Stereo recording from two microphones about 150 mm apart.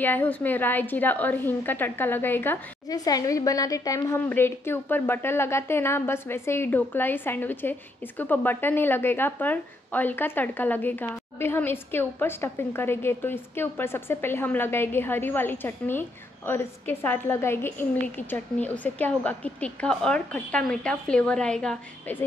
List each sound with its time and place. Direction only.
0.0 s a woman's voice: 10° left (ahead or behind)
2.9 s a woman's voice: 25° left (ahead or behind); by 22.2 s 10° left (ahead or behind)